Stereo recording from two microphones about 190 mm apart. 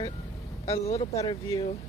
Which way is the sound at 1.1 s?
20° left (ahead or behind).